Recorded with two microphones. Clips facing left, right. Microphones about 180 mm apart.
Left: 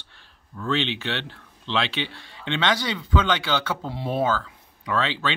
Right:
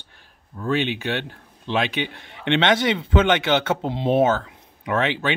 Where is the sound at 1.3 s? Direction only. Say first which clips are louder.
Right 4 dB; 50° right (ahead or behind).